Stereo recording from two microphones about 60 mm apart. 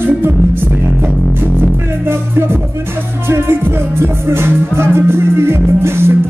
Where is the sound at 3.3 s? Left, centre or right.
Right.